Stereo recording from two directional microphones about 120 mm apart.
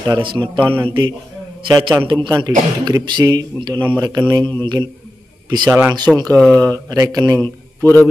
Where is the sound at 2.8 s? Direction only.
35° right (ahead or behind).